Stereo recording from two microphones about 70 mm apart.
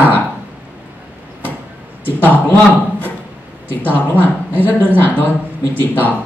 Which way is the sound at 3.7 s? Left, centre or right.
Left.